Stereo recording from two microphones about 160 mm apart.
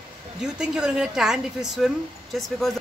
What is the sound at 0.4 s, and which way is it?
A woman's voice, 5° right (ahead or behind).